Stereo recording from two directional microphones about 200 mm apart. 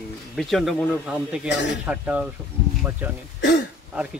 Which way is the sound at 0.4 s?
Centre (ahead or behind).